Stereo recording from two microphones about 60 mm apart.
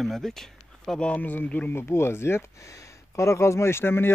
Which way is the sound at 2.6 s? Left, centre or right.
Left.